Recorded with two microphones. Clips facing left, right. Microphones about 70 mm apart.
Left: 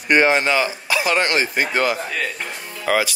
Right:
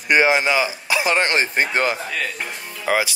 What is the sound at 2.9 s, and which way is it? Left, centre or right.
Speech, centre.